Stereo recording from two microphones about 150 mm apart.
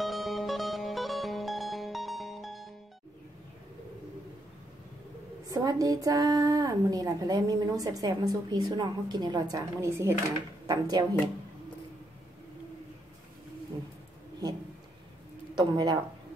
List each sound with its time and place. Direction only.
0.0 s music: centre (ahead or behind)
5.5 s a woman's voice: 25° right (ahead or behind)
15.5 s speech: 30° right (ahead or behind)